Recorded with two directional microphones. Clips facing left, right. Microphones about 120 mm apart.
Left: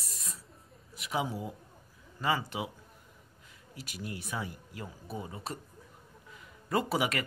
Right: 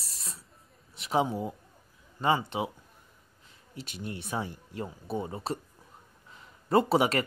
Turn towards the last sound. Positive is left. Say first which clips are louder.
# right 6 dB
turn(degrees=-30)  # may be behind; listen again after turning